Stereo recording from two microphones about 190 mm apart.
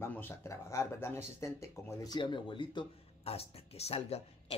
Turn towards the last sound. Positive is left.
turn(degrees=35)  # may be behind; listen again after turning